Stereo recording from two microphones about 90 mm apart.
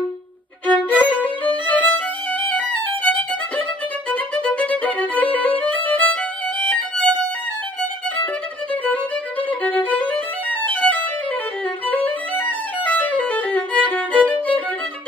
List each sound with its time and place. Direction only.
0.7 s violin: 15° left (ahead or behind)
8.9 s violin: 15° left (ahead or behind)
11.9 s music: 20° left (ahead or behind)